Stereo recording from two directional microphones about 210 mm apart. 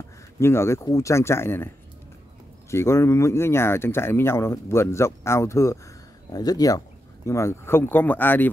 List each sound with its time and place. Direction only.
0.4 s speech: 10° left (ahead or behind)
2.7 s speech: 15° left (ahead or behind)